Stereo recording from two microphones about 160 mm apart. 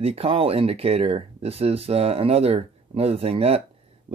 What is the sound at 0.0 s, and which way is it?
Speech, 40° right (ahead or behind).